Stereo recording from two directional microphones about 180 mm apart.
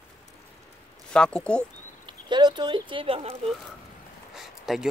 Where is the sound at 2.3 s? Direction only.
25° right (ahead or behind).